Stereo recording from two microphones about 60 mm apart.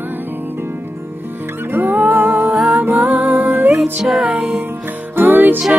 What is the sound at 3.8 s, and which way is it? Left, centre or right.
Music, centre.